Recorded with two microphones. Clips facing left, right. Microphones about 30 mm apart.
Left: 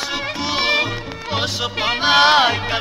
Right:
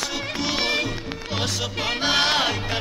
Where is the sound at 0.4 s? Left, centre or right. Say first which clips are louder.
Left 3 dB; centre.